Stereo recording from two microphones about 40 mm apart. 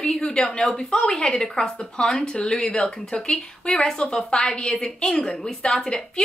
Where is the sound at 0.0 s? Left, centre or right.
Centre.